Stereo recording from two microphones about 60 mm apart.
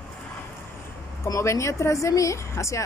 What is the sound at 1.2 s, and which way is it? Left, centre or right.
Speech, left.